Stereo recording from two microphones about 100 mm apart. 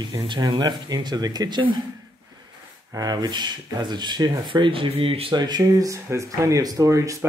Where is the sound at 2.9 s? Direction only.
40° right (ahead or behind); by 5.4 s 65° right (ahead or behind).